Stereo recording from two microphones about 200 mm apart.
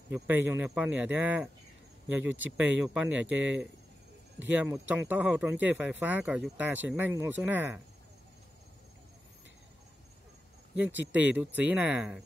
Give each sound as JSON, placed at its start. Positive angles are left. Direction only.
{"t": 0.1, "sound": "speech", "side_deg": -10}
{"t": 10.7, "sound": "speech", "side_deg": -10}